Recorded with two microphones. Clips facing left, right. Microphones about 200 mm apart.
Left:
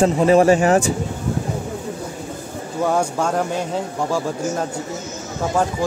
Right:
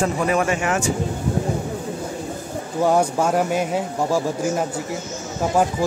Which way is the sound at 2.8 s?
10° right (ahead or behind).